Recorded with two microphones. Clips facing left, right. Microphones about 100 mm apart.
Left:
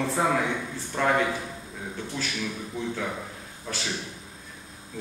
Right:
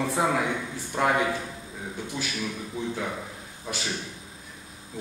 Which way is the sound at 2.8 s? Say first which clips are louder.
Even; 10° right (ahead or behind).